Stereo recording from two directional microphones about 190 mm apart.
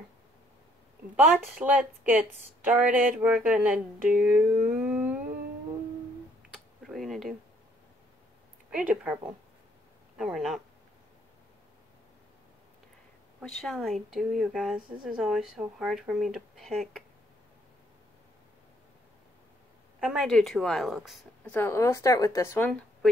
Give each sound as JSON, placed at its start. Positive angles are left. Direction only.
{"t": 1.1, "sound": "speech", "side_deg": -10}
{"t": 6.9, "sound": "a sound", "side_deg": 0}
{"t": 8.7, "sound": "speech", "side_deg": -5}
{"t": 13.4, "sound": "speech", "side_deg": 0}
{"t": 20.0, "sound": "speech", "side_deg": 0}
{"t": 21.5, "sound": "speech", "side_deg": 15}